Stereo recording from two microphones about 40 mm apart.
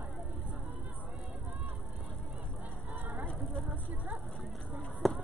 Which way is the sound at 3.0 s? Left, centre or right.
Right.